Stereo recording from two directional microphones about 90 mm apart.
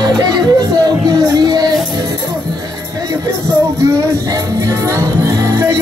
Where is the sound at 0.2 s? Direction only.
50° right (ahead or behind).